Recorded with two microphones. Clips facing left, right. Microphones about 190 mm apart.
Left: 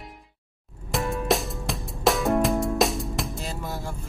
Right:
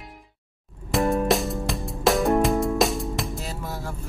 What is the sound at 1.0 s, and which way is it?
Music, 45° right (ahead or behind).